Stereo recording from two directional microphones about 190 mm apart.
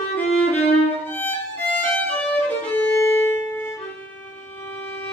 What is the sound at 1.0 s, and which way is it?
Violin, 10° left (ahead or behind).